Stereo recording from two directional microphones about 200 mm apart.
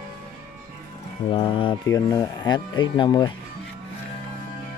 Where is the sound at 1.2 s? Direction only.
25° left (ahead or behind).